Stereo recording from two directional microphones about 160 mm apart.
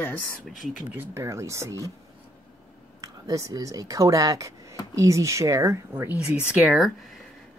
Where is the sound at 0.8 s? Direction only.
15° right (ahead or behind).